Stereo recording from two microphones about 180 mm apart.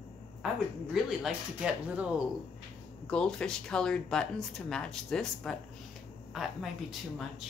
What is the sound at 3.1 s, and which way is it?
Speech, 5° left (ahead or behind).